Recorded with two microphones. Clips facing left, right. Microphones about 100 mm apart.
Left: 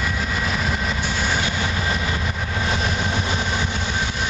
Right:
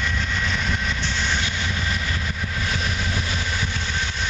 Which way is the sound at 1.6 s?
40° left (ahead or behind).